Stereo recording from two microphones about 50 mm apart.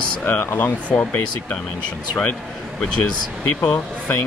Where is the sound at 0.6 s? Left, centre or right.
Left.